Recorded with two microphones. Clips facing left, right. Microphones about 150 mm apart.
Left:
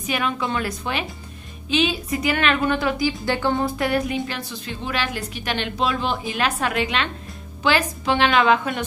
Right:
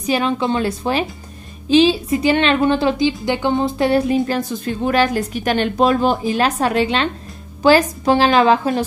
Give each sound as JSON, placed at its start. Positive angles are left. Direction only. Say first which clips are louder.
{"t": 0.0, "sound": "a woman's voice", "louder": "right 6 dB", "side_deg": -30}